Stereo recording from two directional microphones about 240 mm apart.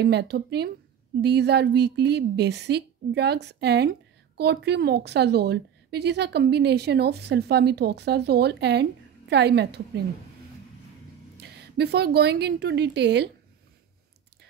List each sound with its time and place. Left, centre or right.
0.0 s a woman's voice: right
11.3 s a woman's voice: right